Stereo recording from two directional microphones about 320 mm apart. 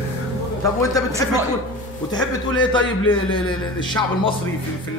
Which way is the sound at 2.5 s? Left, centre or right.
Centre.